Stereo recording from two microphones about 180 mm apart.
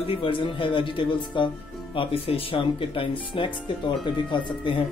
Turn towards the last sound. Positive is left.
turn(degrees=25)  # may be behind; listen again after turning